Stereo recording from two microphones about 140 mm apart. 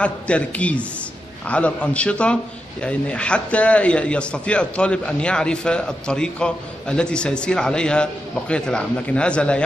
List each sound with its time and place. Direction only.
0.0 s a man's voice: 10° left (ahead or behind)